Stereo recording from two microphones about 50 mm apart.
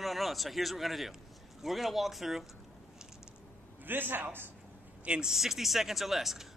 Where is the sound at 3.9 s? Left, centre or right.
Right.